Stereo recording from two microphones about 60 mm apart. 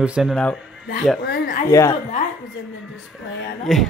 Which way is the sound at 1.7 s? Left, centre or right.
Left.